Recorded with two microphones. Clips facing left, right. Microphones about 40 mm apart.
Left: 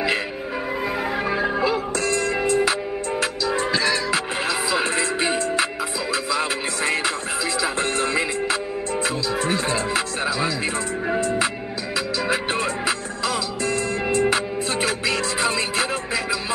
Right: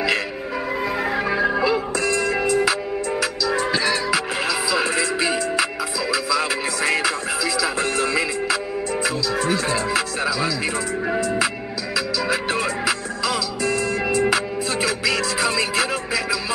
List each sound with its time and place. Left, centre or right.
1.1 s music: centre
2.0 s music: centre
3.7 s music: centre
4.1 s music: left
6.3 s music: centre
11.1 s music: centre